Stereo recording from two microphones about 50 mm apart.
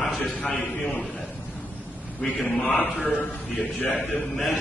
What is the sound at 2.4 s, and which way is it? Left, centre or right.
Speech, centre.